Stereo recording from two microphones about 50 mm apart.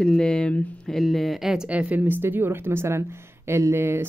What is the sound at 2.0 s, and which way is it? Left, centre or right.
Speech, right.